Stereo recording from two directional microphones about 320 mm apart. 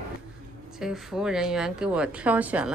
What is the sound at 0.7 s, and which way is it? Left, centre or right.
Speech, centre.